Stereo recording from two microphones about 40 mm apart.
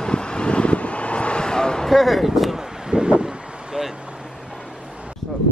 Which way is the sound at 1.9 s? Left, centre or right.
Centre.